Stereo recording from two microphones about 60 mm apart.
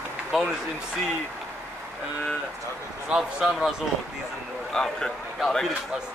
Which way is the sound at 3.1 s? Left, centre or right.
Centre.